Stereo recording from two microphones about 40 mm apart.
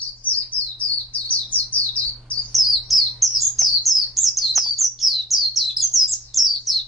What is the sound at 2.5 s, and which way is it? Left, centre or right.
Bird, centre.